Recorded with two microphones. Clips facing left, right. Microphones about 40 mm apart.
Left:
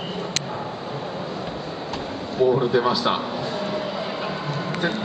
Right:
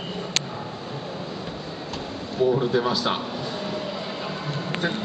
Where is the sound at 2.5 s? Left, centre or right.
Centre.